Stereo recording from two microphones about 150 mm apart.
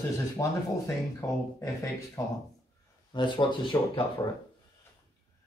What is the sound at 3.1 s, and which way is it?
Speech, 30° left (ahead or behind).